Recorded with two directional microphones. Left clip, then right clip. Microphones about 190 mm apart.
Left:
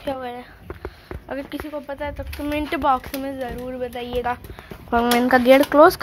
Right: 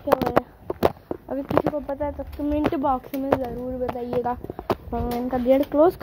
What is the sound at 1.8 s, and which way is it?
Speech, 30° right (ahead or behind).